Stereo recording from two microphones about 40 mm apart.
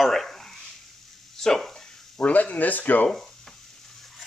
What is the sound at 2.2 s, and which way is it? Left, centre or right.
Speech, left.